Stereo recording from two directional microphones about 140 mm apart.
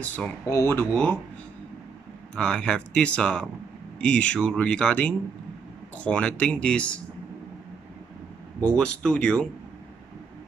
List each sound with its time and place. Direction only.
0.0 s speech: 10° left (ahead or behind)
2.3 s speech: 5° left (ahead or behind)
8.5 s speech: 5° left (ahead or behind)